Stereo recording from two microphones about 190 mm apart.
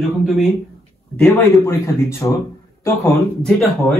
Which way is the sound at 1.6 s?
15° left (ahead or behind).